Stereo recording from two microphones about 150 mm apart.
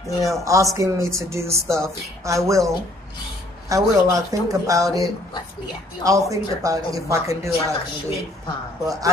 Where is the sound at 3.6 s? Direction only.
20° right (ahead or behind).